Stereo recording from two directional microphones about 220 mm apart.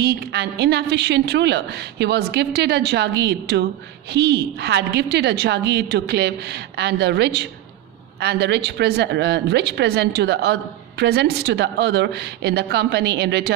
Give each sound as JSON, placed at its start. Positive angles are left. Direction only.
{"t": 0.0, "sound": "a woman's voice", "side_deg": -50}